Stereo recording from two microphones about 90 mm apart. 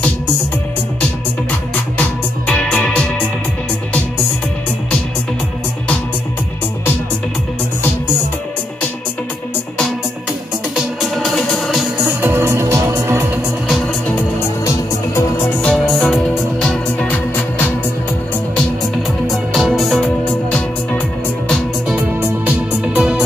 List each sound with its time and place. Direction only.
2.0 s music: 10° left (ahead or behind)
11.0 s music: 5° left (ahead or behind)
12.2 s music: 25° right (ahead or behind)
15.6 s music: 5° left (ahead or behind)
19.2 s music: centre (ahead or behind)
21.8 s music: 15° right (ahead or behind)